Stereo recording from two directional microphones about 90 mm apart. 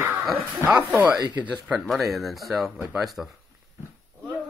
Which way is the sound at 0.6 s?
15° right (ahead or behind).